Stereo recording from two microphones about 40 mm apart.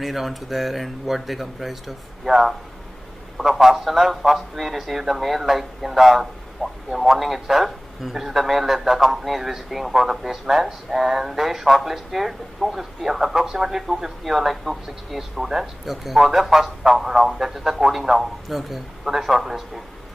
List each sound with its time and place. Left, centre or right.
0.0 s a man's voice: centre